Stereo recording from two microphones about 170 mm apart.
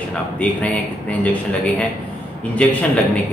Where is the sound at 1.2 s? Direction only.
10° left (ahead or behind).